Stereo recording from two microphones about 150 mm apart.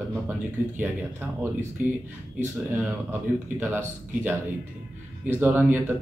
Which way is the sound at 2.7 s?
15° right (ahead or behind).